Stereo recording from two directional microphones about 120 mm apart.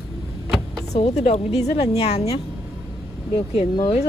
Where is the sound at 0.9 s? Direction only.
70° left (ahead or behind).